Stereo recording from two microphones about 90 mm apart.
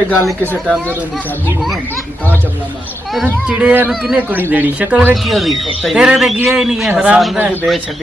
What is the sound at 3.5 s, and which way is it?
Speech, 15° right (ahead or behind).